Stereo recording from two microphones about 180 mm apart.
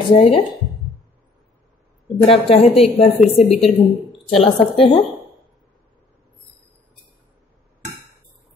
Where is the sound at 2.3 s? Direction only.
35° left (ahead or behind).